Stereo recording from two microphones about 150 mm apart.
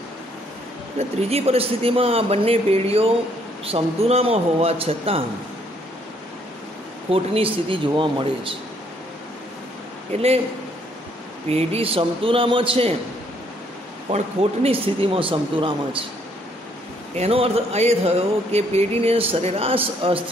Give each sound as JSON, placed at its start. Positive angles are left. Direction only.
{"t": 0.9, "sound": "speech", "side_deg": -40}
{"t": 7.1, "sound": "speech", "side_deg": -40}
{"t": 10.1, "sound": "speech", "side_deg": -45}
{"t": 11.4, "sound": "speech", "side_deg": -45}
{"t": 14.1, "sound": "speech", "side_deg": -40}
{"t": 17.2, "sound": "speech", "side_deg": -40}